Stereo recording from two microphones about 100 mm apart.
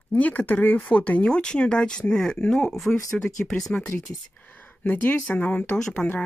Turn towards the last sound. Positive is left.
turn(degrees=10)  # may be behind; listen again after turning